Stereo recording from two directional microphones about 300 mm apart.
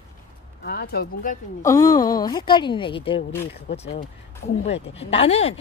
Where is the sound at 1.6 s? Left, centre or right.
Centre.